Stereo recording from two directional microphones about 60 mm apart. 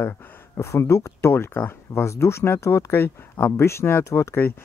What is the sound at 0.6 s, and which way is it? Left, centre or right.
Speech, left.